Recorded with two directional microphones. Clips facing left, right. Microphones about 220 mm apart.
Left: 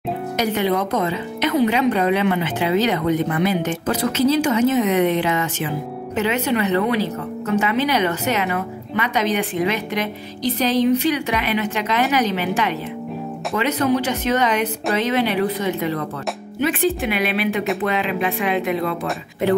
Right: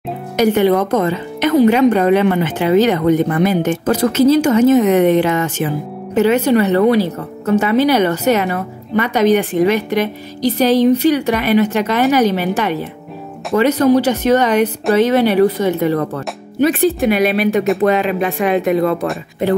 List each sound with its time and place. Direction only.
0.6 s speech: 50° right (ahead or behind)